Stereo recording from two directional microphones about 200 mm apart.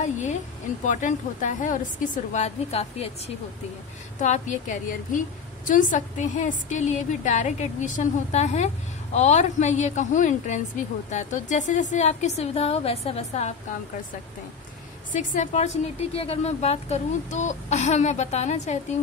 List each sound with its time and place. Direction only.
0.0 s a woman's voice: 35° left (ahead or behind)
4.2 s a woman's voice: 35° left (ahead or behind)
15.1 s a woman's voice: 40° left (ahead or behind)